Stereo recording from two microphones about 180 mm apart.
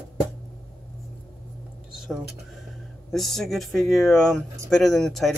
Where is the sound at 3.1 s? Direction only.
Centre (ahead or behind).